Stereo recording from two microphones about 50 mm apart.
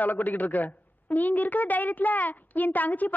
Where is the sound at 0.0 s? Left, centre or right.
Left.